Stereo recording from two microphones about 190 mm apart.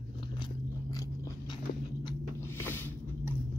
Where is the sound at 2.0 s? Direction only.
15° left (ahead or behind).